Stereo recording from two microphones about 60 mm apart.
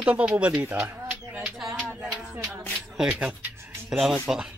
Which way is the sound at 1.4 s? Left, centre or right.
Centre.